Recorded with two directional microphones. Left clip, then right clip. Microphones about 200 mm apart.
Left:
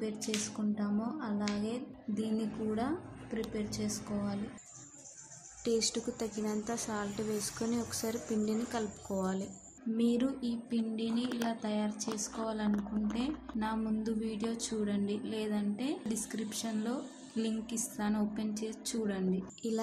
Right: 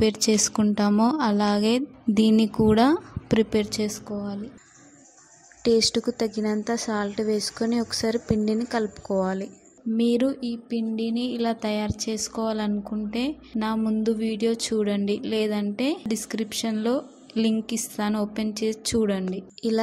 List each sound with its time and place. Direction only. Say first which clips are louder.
0.0 s a woman's voice: right 16 dB; 45° right (ahead or behind)
5.6 s speech: right 12 dB; 35° right (ahead or behind)